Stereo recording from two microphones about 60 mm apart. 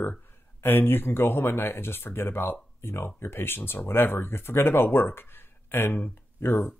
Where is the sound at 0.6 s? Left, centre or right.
Left.